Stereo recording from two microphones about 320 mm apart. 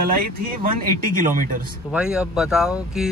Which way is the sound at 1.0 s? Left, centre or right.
Right.